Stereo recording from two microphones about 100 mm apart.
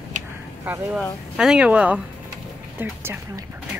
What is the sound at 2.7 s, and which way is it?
Speech, 25° right (ahead or behind).